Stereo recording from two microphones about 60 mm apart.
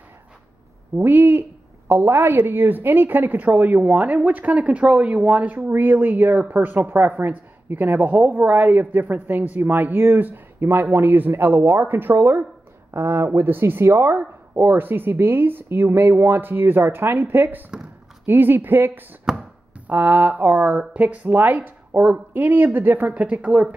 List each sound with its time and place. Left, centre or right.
0.9 s a woman's voice: right
19.3 s speech: centre
19.9 s a woman's voice: right
23.1 s a woman's voice: right